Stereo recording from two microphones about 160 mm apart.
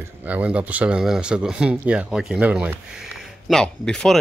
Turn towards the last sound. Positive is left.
turn(degrees=5)  # may be behind; listen again after turning